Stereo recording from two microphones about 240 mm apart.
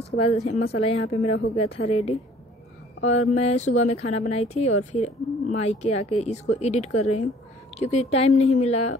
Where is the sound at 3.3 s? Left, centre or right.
Left.